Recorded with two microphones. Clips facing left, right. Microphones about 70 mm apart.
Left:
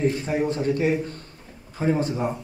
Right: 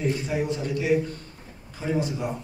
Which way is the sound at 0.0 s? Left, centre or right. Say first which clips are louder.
Left 3 dB; left.